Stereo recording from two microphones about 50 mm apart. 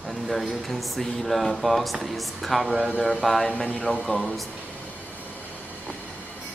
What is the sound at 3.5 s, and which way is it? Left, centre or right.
Speech, left.